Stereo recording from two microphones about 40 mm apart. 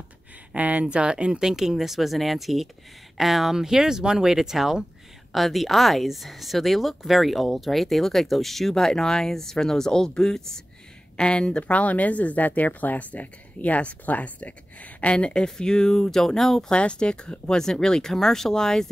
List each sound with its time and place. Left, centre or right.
0.6 s speech: right
0.8 s speech: right; by 10.6 s centre
11.1 s speech: left
16.7 s speech: left